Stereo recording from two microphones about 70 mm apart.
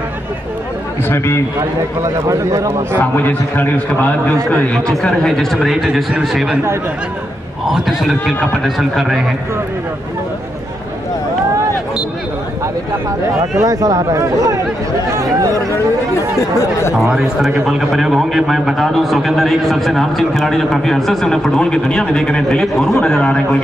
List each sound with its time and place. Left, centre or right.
1.0 s a man's voice: left
2.2 s speech: right
3.0 s a man's voice: left
4.8 s a man's voice: centre
7.7 s a man's voice: centre
13.6 s speech: right
17.0 s a man's voice: centre